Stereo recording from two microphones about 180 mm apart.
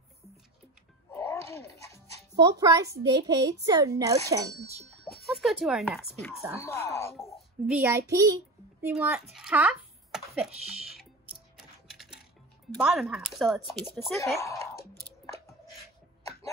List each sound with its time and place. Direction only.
1.1 s music: 15° left (ahead or behind)
2.3 s a child's voice: 20° right (ahead or behind)
5.0 s music: centre (ahead or behind)
6.6 s speech: 15° left (ahead or behind)
7.8 s a child's voice: 15° right (ahead or behind)
8.8 s a child's voice: 10° right (ahead or behind)
9.3 s a sound: 5° right (ahead or behind)
10.7 s music: 5° right (ahead or behind)
12.7 s speech: centre (ahead or behind)
14.4 s speech: 15° left (ahead or behind)